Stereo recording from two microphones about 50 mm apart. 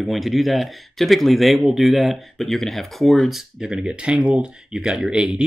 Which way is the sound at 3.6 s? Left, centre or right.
Centre.